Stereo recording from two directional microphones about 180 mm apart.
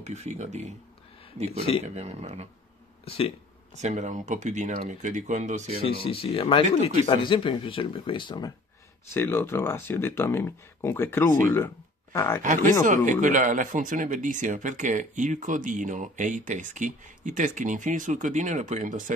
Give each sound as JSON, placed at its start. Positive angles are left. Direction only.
{"t": 0.0, "sound": "speech", "side_deg": -40}
{"t": 2.0, "sound": "speech", "side_deg": -35}
{"t": 3.7, "sound": "speech", "side_deg": -40}
{"t": 6.0, "sound": "speech", "side_deg": 30}
{"t": 9.1, "sound": "speech", "side_deg": 15}
{"t": 12.4, "sound": "speech", "side_deg": -45}